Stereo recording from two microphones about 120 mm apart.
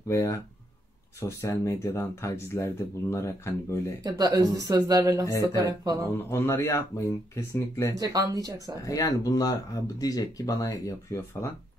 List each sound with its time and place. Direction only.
0.1 s speech: 20° left (ahead or behind)
4.0 s speech: 30° right (ahead or behind)
5.2 s speech: 25° left (ahead or behind)
5.6 s speech: 30° right (ahead or behind)
6.3 s speech: 25° left (ahead or behind)
7.9 s speech: 30° right (ahead or behind)
8.8 s speech: 30° left (ahead or behind)